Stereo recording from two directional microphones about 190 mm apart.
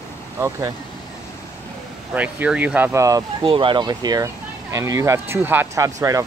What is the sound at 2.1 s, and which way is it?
Speech, 10° right (ahead or behind).